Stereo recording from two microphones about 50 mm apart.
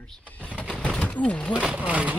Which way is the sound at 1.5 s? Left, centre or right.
Right.